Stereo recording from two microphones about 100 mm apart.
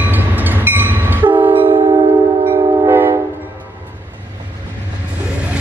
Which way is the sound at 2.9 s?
20° right (ahead or behind).